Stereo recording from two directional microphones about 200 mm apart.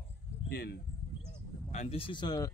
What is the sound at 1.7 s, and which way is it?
Speech, 30° left (ahead or behind).